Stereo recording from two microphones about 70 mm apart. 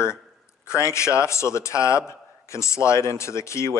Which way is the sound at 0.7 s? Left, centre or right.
Left.